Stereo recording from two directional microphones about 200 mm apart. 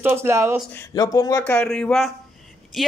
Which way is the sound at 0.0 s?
10° right (ahead or behind).